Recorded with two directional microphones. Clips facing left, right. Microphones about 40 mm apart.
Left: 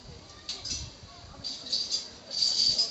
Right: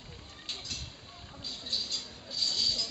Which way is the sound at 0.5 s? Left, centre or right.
Right.